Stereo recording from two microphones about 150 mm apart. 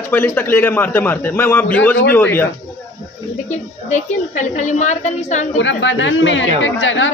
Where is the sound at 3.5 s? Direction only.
50° left (ahead or behind).